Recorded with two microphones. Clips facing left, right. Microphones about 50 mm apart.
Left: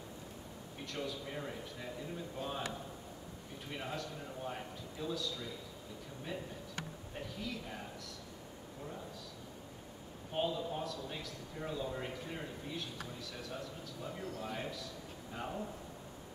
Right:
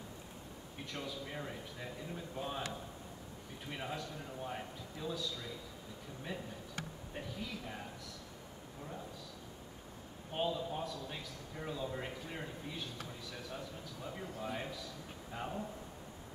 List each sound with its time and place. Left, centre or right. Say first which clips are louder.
0.9 s a man's voice: left 2 dB; centre
3.7 s a man's voice: even; centre
7.2 s a man's voice: left 1 dB; centre
10.3 s a man's voice: left 1 dB; centre
14.2 s a man's voice: even; centre